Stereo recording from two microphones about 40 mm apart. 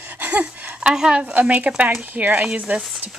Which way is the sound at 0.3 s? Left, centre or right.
Right.